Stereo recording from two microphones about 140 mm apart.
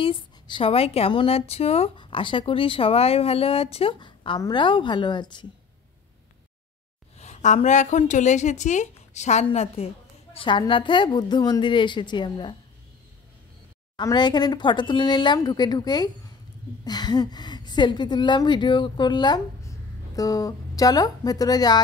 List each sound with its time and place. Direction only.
0.0 s speech: 40° left (ahead or behind)
7.2 s a woman's voice: 55° left (ahead or behind)
10.3 s a woman's voice: 35° left (ahead or behind)
13.9 s a woman's voice: 30° left (ahead or behind)